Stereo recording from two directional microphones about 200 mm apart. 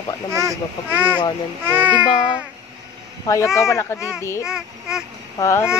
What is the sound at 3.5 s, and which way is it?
Speech, 15° left (ahead or behind).